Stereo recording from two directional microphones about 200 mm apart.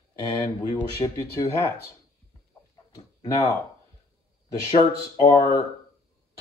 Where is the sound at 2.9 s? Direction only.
20° left (ahead or behind).